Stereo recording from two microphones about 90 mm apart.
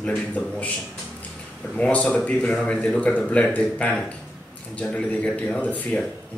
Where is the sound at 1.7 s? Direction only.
15° left (ahead or behind).